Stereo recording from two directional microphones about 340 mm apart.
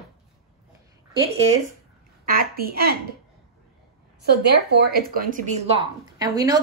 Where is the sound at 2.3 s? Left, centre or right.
Right.